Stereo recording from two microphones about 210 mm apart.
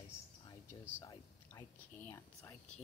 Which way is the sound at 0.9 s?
15° left (ahead or behind).